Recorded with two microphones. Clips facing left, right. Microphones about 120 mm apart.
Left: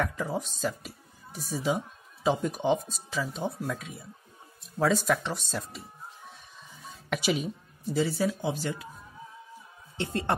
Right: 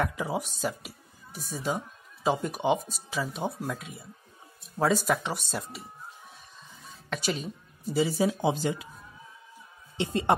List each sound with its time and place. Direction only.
0.0 s speech: 10° right (ahead or behind)
7.1 s a woman's voice: 5° left (ahead or behind)
8.3 s speech: 25° right (ahead or behind)
9.9 s speech: 15° right (ahead or behind)